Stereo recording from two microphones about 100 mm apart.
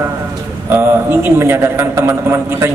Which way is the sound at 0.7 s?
25° right (ahead or behind).